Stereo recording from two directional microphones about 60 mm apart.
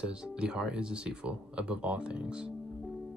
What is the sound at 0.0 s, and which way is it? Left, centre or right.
Speech, centre.